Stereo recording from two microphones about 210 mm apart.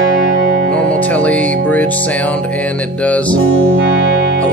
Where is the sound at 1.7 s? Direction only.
5° left (ahead or behind).